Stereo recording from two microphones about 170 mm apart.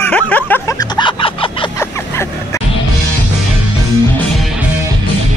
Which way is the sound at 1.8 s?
15° left (ahead or behind).